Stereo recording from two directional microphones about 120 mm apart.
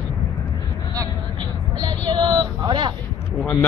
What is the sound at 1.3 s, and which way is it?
Vehicle, 35° right (ahead or behind).